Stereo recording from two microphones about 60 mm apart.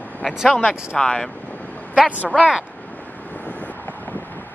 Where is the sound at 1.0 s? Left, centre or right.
Centre.